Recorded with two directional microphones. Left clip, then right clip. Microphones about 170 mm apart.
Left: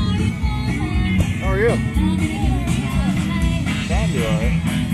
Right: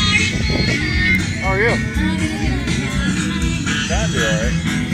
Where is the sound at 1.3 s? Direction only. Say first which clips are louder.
Right 4 dB; 35° left (ahead or behind).